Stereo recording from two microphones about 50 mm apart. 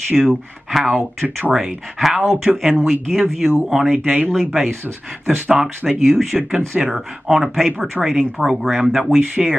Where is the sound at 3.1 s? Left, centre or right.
Centre.